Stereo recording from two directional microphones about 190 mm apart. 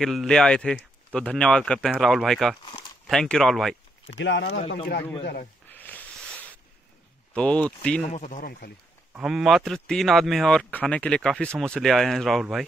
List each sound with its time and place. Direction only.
0.0 s speech: centre (ahead or behind)
2.6 s speech: 25° left (ahead or behind)
3.1 s speech: 5° left (ahead or behind)
4.2 s speech: 70° left (ahead or behind)
4.6 s speech: 30° left (ahead or behind)
5.2 s speech: 55° left (ahead or behind)
5.7 s a sound: 10° left (ahead or behind)
7.3 s speech: 5° left (ahead or behind)
8.0 s speech: 40° left (ahead or behind)
9.1 s speech: centre (ahead or behind)